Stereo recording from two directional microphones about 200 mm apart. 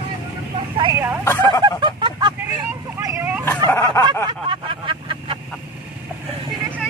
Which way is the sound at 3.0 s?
15° right (ahead or behind).